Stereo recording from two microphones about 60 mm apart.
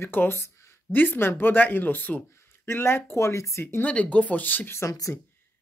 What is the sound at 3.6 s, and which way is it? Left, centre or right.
Speech, left.